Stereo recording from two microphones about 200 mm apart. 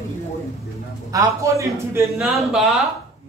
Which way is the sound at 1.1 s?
15° right (ahead or behind).